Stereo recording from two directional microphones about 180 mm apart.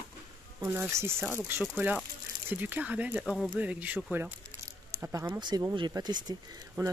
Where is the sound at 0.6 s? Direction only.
10° right (ahead or behind).